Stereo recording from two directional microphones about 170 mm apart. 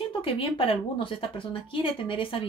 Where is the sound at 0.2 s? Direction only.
30° left (ahead or behind).